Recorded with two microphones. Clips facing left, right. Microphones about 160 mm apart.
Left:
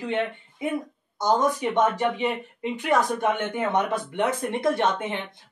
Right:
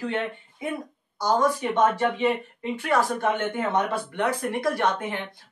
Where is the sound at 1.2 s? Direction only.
20° left (ahead or behind).